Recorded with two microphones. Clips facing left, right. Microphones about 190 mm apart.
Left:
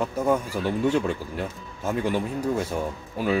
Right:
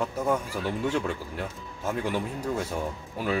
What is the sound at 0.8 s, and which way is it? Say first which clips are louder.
Speech: left 6 dB; centre (ahead or behind).